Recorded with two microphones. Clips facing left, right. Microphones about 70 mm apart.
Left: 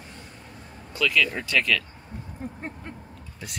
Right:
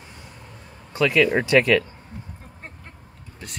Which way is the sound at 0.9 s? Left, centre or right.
Right.